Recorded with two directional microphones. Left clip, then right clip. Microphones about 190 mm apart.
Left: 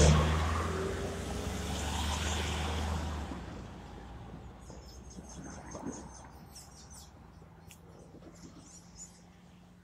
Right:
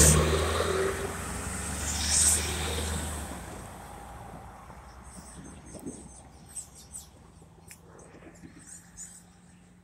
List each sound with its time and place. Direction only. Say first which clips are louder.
0.0 s vehicle: right 5 dB; 65° right (ahead or behind); by 6.0 s 25° right (ahead or behind)